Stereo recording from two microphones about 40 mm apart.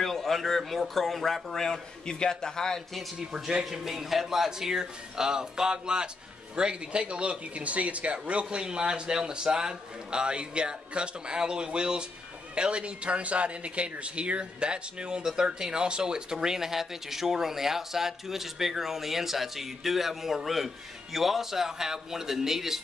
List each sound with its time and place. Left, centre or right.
0.0 s speech: centre
3.3 s speech: centre